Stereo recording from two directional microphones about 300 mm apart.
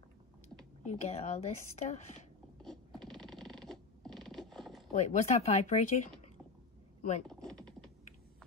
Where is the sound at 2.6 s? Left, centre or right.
Centre.